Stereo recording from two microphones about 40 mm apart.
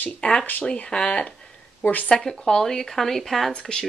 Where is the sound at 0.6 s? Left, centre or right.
Left.